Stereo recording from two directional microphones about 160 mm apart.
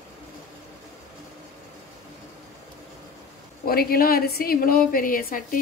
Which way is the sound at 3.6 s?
70° left (ahead or behind).